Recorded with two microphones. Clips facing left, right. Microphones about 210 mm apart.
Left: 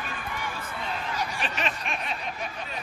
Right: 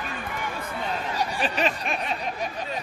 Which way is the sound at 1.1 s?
35° right (ahead or behind).